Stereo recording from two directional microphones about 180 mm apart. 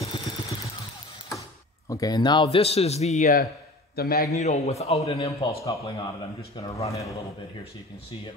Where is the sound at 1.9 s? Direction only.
20° left (ahead or behind).